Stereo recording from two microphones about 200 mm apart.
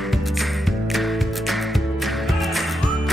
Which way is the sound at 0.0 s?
Centre (ahead or behind).